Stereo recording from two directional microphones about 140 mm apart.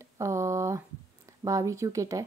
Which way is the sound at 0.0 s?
20° right (ahead or behind).